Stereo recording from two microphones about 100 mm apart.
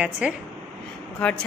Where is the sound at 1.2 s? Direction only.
10° left (ahead or behind).